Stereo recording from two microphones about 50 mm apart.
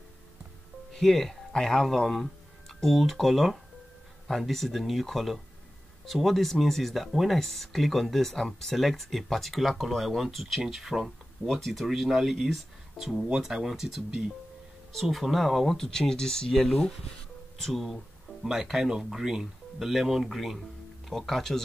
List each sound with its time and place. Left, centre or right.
0.9 s speech: centre
18.4 s speech: centre